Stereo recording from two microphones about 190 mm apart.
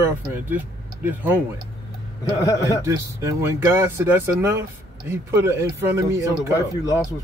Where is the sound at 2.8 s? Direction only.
15° right (ahead or behind).